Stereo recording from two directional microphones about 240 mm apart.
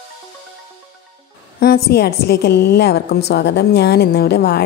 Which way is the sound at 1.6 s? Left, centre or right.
Left.